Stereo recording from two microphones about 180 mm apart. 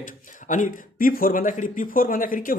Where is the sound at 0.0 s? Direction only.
45° left (ahead or behind).